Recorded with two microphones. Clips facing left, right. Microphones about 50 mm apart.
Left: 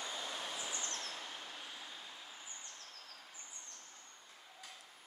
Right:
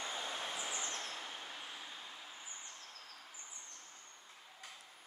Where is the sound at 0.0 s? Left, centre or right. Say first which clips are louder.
Right 1 dB; right.